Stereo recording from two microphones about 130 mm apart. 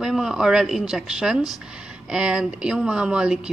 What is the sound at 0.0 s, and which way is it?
A woman's voice, 5° right (ahead or behind).